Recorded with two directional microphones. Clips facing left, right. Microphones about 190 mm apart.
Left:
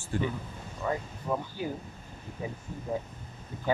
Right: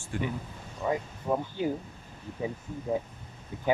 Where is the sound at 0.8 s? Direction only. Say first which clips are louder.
Right 2 dB; 15° right (ahead or behind).